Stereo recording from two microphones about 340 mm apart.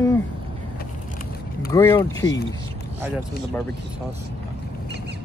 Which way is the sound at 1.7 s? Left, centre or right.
Centre.